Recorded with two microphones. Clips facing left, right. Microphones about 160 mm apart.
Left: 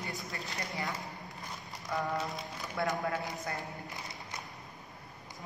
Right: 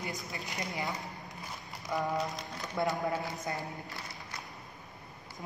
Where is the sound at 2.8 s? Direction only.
20° right (ahead or behind).